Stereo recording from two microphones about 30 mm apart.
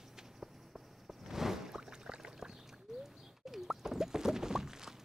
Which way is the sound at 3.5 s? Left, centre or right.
Centre.